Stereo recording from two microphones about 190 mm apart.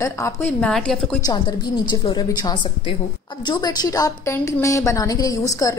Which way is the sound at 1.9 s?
20° left (ahead or behind).